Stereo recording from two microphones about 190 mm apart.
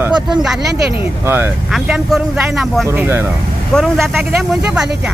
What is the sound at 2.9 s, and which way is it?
Speech, 10° right (ahead or behind).